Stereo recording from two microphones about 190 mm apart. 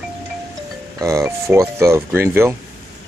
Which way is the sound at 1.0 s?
15° right (ahead or behind).